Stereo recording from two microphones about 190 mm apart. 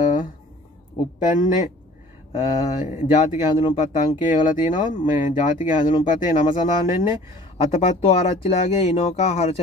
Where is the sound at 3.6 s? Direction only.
40° left (ahead or behind).